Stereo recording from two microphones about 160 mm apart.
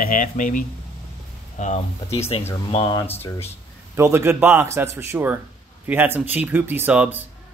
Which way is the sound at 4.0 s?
15° right (ahead or behind).